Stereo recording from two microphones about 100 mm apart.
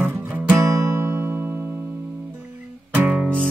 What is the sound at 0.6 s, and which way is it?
Music, 30° right (ahead or behind).